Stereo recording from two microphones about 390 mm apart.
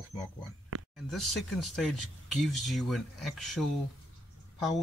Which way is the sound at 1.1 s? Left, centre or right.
Centre.